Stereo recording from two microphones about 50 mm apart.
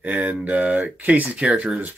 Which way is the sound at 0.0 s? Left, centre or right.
Right.